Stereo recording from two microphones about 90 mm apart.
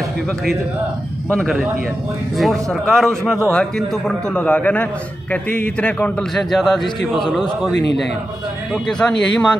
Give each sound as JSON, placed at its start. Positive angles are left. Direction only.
{"t": 1.3, "sound": "a man's voice", "side_deg": 0}
{"t": 4.4, "sound": "a man's voice", "side_deg": 15}
{"t": 6.3, "sound": "a man's voice", "side_deg": 0}